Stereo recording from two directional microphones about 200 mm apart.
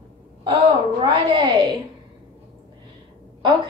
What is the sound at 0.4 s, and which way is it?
A woman's voice, 20° right (ahead or behind).